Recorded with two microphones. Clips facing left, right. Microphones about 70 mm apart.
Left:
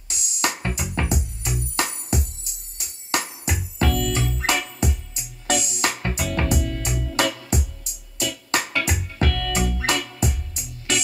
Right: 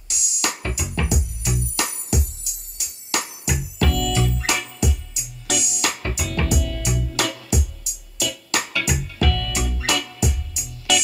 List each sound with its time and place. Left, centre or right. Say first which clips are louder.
0.1 s music: left 2 dB; left